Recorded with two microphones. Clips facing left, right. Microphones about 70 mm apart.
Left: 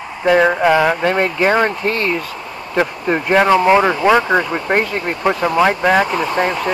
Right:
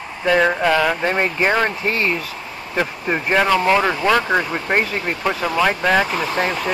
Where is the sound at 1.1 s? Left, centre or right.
Left.